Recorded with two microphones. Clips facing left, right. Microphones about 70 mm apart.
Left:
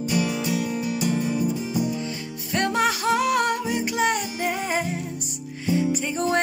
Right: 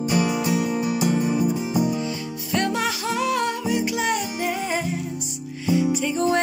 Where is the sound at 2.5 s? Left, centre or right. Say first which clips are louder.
Left 1 dB; left.